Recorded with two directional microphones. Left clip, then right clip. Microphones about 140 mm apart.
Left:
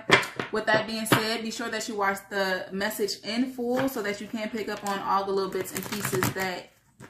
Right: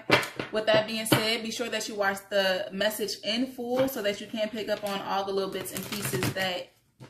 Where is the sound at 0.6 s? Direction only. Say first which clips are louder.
Even; 20° right (ahead or behind).